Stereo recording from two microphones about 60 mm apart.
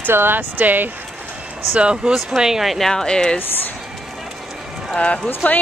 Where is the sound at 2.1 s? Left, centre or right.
Centre.